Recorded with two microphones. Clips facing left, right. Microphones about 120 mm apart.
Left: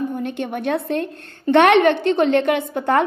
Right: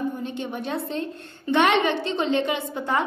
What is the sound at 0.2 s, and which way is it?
A woman's voice, 60° left (ahead or behind).